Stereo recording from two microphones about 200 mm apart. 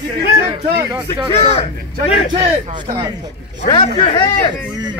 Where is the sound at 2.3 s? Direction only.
35° right (ahead or behind).